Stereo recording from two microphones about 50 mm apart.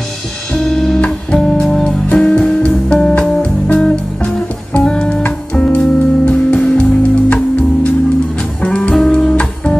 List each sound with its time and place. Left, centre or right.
0.7 s music: centre